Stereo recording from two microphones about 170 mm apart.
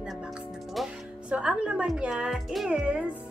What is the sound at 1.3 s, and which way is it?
Speech, 5° right (ahead or behind).